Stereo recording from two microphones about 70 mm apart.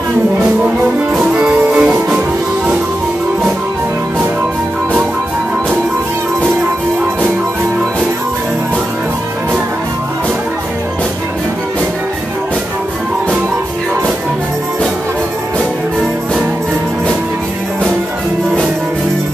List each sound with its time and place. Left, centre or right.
1.3 s music: centre